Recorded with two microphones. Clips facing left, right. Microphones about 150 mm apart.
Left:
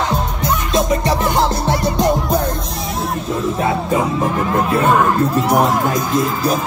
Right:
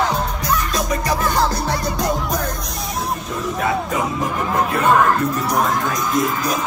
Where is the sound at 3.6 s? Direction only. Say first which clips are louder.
Left 2 dB; 25° left (ahead or behind).